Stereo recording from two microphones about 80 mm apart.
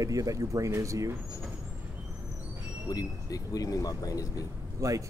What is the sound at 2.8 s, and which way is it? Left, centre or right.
Speech, left.